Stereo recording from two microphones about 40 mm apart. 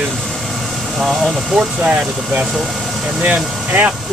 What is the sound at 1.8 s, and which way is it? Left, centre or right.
Speech, right.